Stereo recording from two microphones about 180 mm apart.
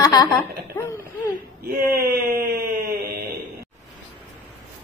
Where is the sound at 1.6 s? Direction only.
55° right (ahead or behind).